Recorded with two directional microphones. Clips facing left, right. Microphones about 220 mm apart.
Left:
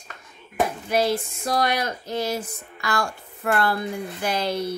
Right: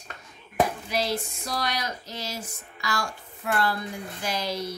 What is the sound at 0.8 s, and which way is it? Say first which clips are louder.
A woman's voice: left 6 dB; 55° left (ahead or behind).